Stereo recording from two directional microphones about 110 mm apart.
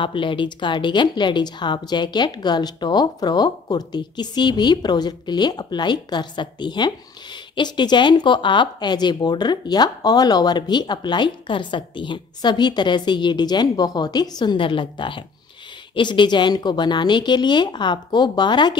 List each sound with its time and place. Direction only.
0.0 s a woman's voice: 50° left (ahead or behind)